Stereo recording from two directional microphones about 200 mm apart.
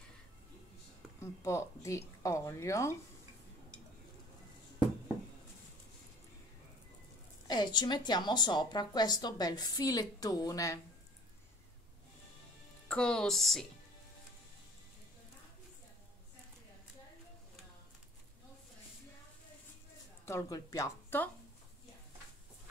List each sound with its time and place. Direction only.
1.2 s speech: 15° left (ahead or behind)
7.4 s a woman's voice: 20° left (ahead or behind)
12.8 s speech: 5° left (ahead or behind)
20.2 s speech: 15° left (ahead or behind)